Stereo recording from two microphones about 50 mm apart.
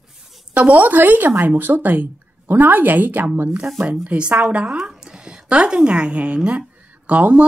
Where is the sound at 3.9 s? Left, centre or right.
Right.